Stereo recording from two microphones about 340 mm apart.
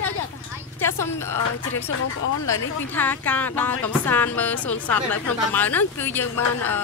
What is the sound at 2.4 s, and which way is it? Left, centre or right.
Speech, centre.